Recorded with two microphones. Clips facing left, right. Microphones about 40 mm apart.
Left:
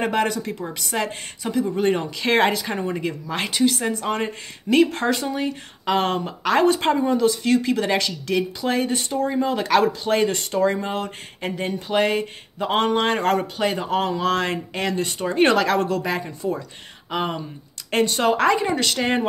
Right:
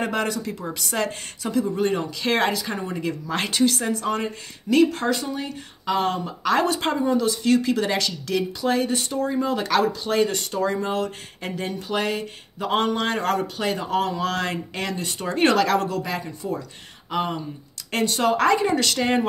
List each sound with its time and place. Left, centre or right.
0.0 s speech: left
0.7 s speech: centre
3.3 s speech: centre; by 6.3 s left
6.4 s speech: left
10.2 s speech: left
15.1 s speech: left
18.3 s speech: centre